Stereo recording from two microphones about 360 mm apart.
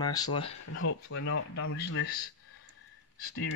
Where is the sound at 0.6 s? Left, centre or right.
Left.